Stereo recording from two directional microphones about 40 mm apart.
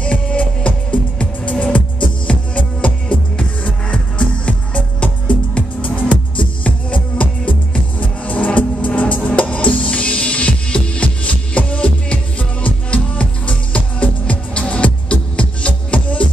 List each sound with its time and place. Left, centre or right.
0.0 s music: left
5.9 s music: left